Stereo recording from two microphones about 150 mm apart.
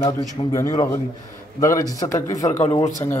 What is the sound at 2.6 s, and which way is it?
Speech, 45° left (ahead or behind).